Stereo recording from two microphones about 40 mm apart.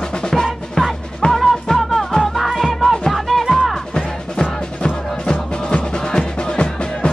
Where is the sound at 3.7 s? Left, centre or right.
Left.